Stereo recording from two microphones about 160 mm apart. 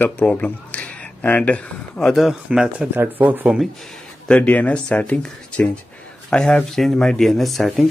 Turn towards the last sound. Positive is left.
turn(degrees=0)  # may be behind; listen again after turning